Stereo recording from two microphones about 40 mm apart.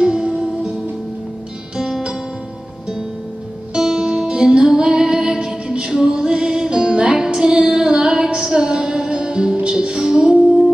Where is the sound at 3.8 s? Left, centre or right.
Centre.